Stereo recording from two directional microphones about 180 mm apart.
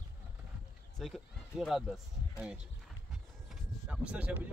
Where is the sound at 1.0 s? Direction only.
Centre (ahead or behind).